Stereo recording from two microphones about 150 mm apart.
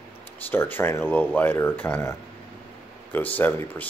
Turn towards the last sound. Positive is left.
turn(degrees=10)  # may be behind; listen again after turning